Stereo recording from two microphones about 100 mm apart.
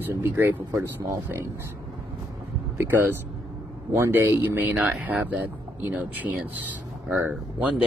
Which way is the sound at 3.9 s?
25° right (ahead or behind).